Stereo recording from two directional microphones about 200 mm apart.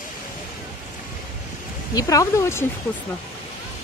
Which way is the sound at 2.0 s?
15° left (ahead or behind).